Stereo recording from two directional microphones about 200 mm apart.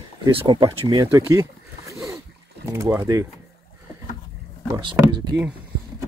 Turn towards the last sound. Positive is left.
turn(degrees=-15)  # may be behind; listen again after turning